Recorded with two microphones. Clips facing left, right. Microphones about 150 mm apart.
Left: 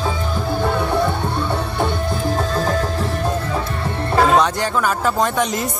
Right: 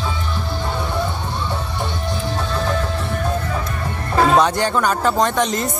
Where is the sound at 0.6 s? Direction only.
60° left (ahead or behind).